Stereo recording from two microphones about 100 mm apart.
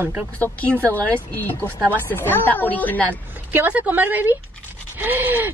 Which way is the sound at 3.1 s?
20° right (ahead or behind).